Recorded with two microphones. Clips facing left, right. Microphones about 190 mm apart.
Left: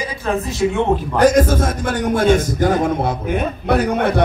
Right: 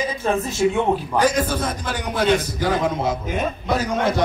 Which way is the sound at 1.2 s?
45° left (ahead or behind).